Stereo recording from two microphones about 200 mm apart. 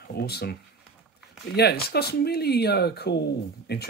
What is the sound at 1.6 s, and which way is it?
Speech, 50° left (ahead or behind).